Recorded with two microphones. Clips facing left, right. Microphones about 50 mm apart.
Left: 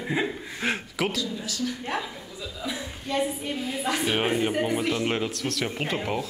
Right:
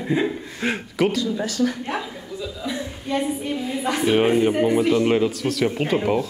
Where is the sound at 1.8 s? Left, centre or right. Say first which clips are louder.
Right 3 dB; centre.